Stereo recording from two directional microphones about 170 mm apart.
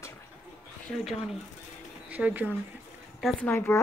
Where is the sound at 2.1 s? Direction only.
10° right (ahead or behind).